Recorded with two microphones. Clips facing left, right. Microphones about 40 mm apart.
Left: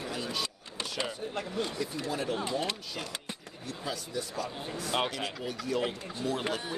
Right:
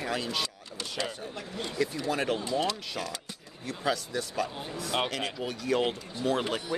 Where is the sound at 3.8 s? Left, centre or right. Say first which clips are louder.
Right 6 dB; right.